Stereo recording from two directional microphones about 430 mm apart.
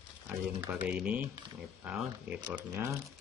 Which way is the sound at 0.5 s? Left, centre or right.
Centre.